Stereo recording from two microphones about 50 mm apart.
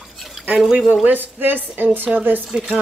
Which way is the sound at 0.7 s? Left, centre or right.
Right.